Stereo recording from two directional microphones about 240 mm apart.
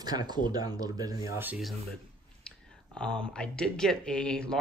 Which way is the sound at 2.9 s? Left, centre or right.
Centre.